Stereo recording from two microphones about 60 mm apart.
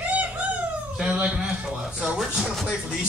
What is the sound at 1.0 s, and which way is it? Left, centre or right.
A man's voice, centre.